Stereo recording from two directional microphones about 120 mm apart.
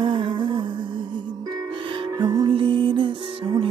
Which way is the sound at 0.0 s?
45° right (ahead or behind).